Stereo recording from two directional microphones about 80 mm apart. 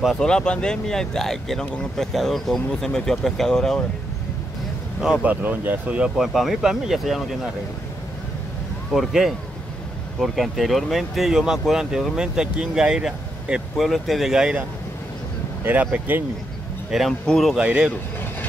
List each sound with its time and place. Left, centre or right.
0.1 s speech: centre
5.2 s speech: right
6.1 s speech: centre
8.9 s speech: centre
15.6 s speech: centre
16.9 s speech: centre
17.6 s speech: centre